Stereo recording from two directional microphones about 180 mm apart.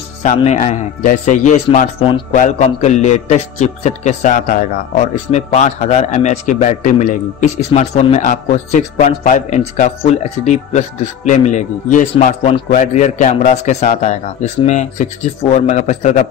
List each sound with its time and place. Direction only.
0.2 s a man's voice: 40° left (ahead or behind)